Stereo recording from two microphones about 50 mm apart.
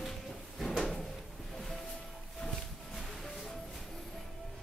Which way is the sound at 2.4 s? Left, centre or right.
Centre.